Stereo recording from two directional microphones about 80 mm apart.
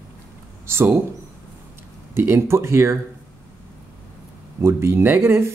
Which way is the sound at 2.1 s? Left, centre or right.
Right.